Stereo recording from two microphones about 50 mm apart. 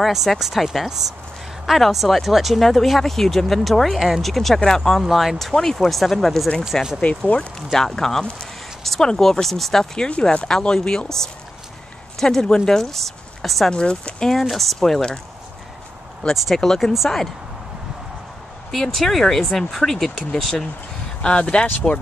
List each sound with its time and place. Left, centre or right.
0.0 s speech: centre
5.0 s speech: centre
5.5 s speech: centre
9.9 s speech: centre
13.7 s speech: centre
14.4 s speech: centre
14.8 s speech: centre
16.5 s speech: centre
18.7 s speech: centre
21.2 s speech: centre